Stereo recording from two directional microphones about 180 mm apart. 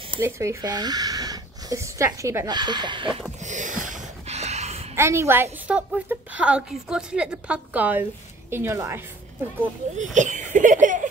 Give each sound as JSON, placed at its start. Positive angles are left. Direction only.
{"t": 0.2, "sound": "speech", "side_deg": -15}
{"t": 3.4, "sound": "snort", "side_deg": -45}
{"t": 4.9, "sound": "a woman's voice", "side_deg": -15}
{"t": 9.9, "sound": "speech", "side_deg": -45}